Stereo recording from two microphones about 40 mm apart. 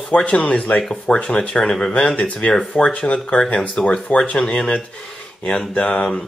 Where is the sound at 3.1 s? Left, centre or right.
Left.